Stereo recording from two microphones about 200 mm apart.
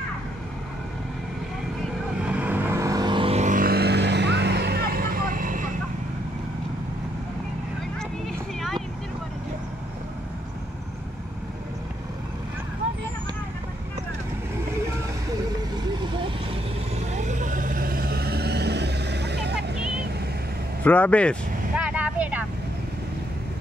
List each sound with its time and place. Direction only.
2.2 s vehicle: 5° right (ahead or behind); by 5.7 s 40° right (ahead or behind)
16.9 s vehicle: 35° right (ahead or behind); by 19.6 s 55° right (ahead or behind)
20.8 s speech: 10° left (ahead or behind)
21.7 s vehicle: 5° right (ahead or behind)